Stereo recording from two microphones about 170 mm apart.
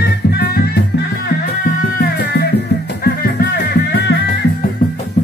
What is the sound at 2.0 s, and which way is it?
Music, 70° left (ahead or behind).